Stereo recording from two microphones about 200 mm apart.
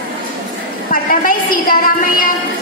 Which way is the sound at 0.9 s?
45° left (ahead or behind).